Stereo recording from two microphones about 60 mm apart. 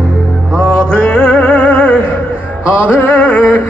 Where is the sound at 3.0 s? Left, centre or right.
Left.